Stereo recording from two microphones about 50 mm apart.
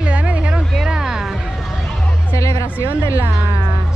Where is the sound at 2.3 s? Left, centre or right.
Left.